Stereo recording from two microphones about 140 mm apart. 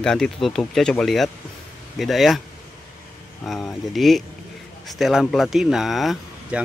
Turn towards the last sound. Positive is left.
turn(degrees=0)  # may be behind; listen again after turning